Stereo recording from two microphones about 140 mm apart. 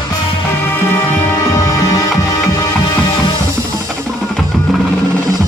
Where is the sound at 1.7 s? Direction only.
25° left (ahead or behind).